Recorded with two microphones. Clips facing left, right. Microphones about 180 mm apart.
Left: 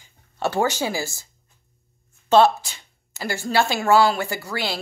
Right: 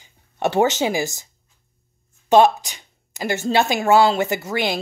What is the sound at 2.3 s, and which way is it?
A woman's voice, 15° right (ahead or behind).